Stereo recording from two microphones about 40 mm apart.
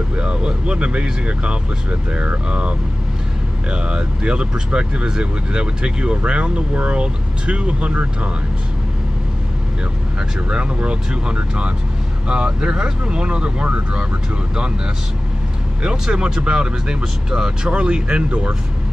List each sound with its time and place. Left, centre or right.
0.1 s speech: right
3.7 s speech: right
10.5 s speech: right
15.8 s speech: right
17.6 s speech: right